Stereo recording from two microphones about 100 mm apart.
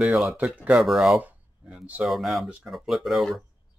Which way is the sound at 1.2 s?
15° right (ahead or behind).